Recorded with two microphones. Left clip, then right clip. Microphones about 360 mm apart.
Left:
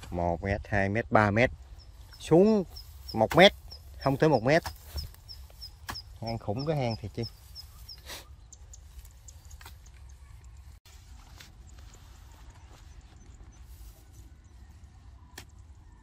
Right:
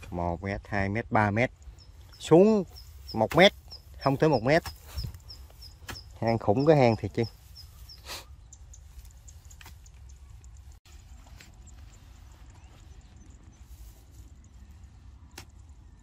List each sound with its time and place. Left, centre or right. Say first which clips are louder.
0.1 s speech: left 2 dB; centre
6.1 s speech: right 12 dB; right
6.4 s speech: right 11 dB; centre
8.0 s dog: right 4 dB; centre